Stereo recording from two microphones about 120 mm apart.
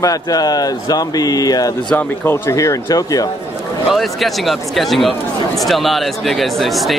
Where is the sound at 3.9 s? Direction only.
Centre (ahead or behind).